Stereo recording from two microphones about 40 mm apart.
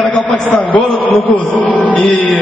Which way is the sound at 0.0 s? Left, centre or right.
Left.